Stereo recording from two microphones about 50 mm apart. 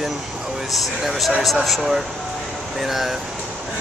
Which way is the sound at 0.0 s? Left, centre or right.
Centre.